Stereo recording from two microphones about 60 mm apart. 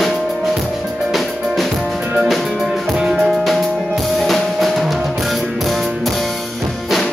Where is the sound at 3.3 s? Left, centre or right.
Centre.